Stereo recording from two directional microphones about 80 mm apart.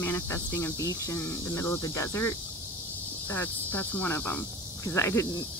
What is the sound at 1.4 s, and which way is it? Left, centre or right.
Speech, left.